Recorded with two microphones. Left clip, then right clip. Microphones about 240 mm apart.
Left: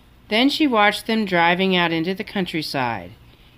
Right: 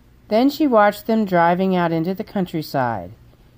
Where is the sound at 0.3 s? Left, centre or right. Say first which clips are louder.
Right 2 dB; right.